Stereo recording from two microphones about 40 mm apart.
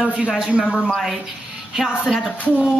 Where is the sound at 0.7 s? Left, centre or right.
Centre.